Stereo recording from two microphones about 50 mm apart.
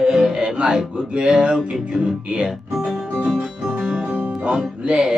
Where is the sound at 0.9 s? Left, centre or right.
Centre.